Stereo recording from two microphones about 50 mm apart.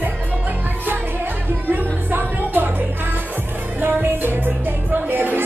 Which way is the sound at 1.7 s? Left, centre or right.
Right.